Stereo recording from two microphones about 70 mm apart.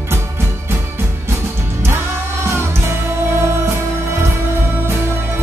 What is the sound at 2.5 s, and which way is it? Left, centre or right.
Music, right.